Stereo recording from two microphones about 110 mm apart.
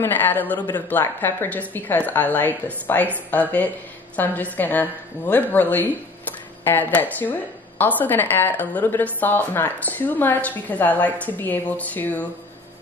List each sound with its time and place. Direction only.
0.0 s a woman's voice: 15° left (ahead or behind)